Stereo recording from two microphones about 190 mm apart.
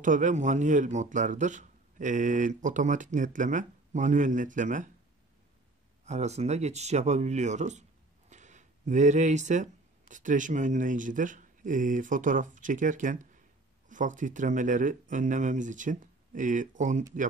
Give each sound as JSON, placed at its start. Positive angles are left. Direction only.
{"t": 0.0, "sound": "speech", "side_deg": -40}
{"t": 6.0, "sound": "speech", "side_deg": -35}